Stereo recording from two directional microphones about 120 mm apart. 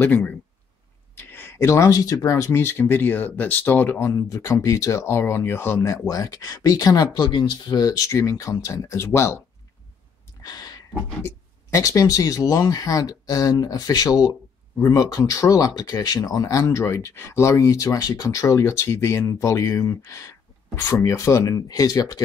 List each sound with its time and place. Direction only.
0.0 s speech: 15° left (ahead or behind)
10.4 s a sound: 35° left (ahead or behind)
11.2 s speech: 25° left (ahead or behind)